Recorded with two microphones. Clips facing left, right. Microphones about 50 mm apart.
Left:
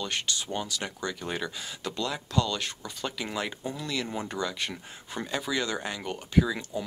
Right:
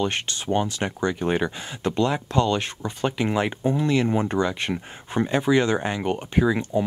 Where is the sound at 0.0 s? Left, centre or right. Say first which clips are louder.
Right 6 dB; right.